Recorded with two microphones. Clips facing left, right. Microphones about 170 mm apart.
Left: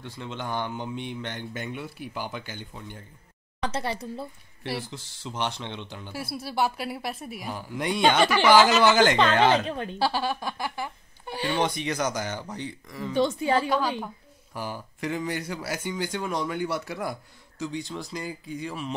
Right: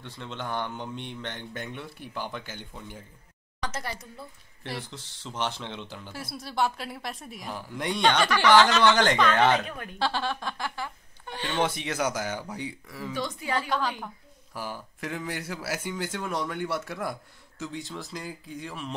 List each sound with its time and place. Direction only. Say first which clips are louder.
0.0 s speech: left 2 dB; centre (ahead or behind)
3.6 s speech: left 5 dB; 30° left (ahead or behind)
4.6 s speech: left 4 dB; centre (ahead or behind)
9.5 s speech: left 2 dB; 30° left (ahead or behind)
9.9 s speech: left 1 dB; 10° left (ahead or behind)
11.6 s speech: right 3 dB; 5° right (ahead or behind)
13.1 s speech: left 8 dB; 25° left (ahead or behind)
14.5 s speech: left 2 dB; centre (ahead or behind)